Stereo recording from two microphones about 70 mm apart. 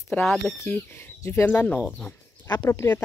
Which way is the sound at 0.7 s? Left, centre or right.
Left.